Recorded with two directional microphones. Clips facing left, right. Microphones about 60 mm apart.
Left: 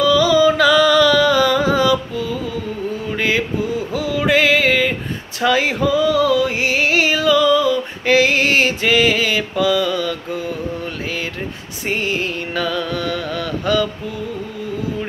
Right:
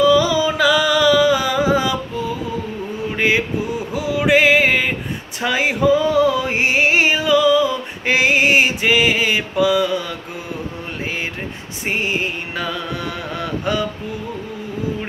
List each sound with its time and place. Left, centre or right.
0.0 s carnatic music: right
3.2 s mantra: right
3.9 s music: centre
5.9 s music: right
11.8 s music: centre